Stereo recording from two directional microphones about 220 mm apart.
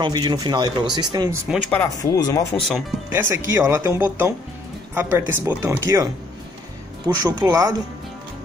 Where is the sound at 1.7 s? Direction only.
10° left (ahead or behind).